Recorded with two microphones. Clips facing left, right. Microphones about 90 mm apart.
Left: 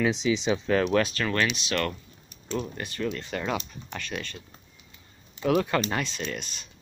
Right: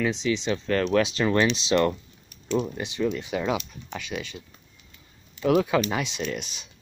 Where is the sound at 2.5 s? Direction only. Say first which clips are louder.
Right 5 dB; centre (ahead or behind).